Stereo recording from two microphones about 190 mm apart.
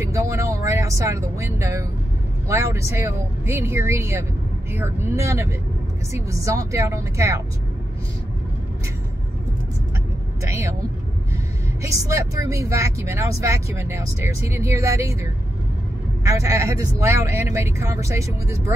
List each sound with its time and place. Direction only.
0.0 s speech: 15° right (ahead or behind)
10.5 s speech: 15° right (ahead or behind)
11.8 s speech: 15° right (ahead or behind)
16.3 s speech: 15° right (ahead or behind)